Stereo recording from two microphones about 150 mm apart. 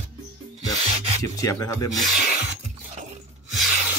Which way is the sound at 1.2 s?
20° left (ahead or behind).